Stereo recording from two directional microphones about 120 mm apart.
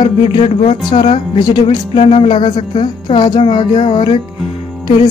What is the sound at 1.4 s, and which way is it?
Speech, 35° left (ahead or behind).